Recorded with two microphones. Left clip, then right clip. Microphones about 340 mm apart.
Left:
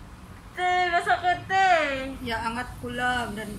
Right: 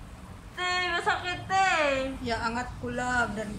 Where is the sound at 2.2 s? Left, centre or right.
Centre.